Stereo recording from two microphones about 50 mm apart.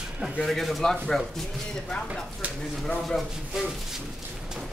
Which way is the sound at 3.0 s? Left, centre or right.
Centre.